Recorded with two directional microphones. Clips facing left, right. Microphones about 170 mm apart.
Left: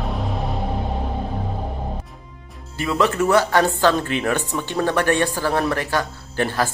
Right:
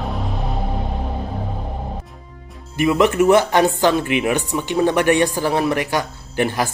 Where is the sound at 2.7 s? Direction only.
15° right (ahead or behind).